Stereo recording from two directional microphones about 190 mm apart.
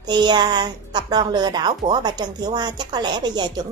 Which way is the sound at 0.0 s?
20° right (ahead or behind).